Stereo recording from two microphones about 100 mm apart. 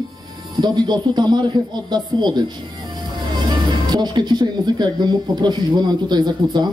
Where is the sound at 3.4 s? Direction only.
45° right (ahead or behind).